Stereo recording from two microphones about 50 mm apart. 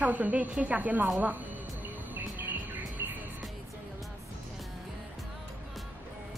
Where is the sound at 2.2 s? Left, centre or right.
Right.